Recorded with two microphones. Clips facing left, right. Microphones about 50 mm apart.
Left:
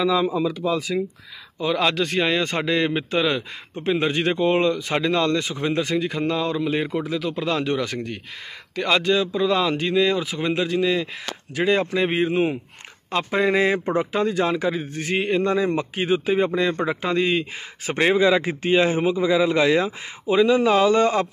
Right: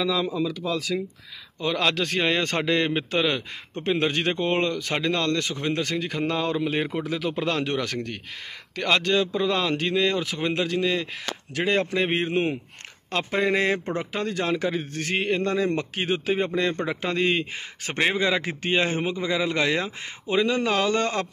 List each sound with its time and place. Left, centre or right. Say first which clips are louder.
0.0 s a man's voice: left 4 dB; centre
1.6 s a man's voice: left 3 dB; centre
17.0 s a man's voice: left 1 dB; centre